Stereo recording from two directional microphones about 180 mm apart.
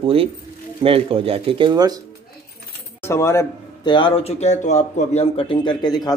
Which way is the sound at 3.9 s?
30° left (ahead or behind).